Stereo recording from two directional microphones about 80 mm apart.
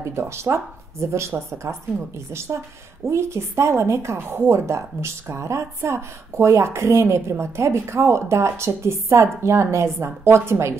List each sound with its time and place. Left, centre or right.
0.0 s speech: right